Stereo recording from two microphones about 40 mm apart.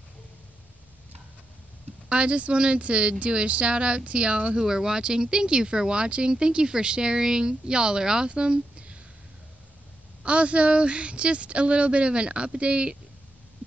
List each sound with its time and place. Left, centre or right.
2.0 s speech: right
4.6 s speech: centre
10.2 s speech: right